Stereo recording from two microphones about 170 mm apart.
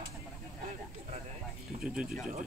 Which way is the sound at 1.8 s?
5° right (ahead or behind).